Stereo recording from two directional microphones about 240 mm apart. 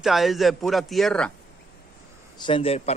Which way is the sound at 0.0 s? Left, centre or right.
Centre.